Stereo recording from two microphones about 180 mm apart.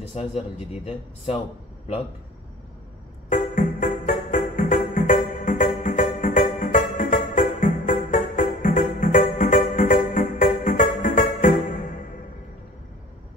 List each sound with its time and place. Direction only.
0.1 s speech: 35° left (ahead or behind)
3.3 s music: 45° left (ahead or behind)